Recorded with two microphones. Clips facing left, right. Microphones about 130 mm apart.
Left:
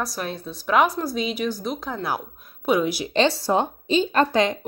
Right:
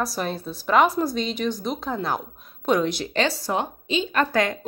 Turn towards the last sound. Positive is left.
turn(degrees=35)  # may be behind; listen again after turning